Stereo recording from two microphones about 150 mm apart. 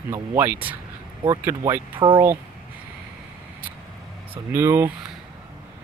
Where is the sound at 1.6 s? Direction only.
30° right (ahead or behind).